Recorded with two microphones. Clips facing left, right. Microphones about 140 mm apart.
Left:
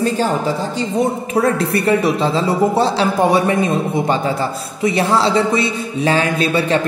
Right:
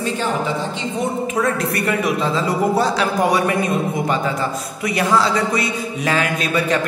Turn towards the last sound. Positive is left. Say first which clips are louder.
# left 3 dB
turn(degrees=30)  # may be behind; listen again after turning